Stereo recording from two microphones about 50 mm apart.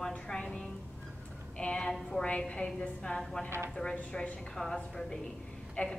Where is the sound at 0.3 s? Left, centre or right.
Centre.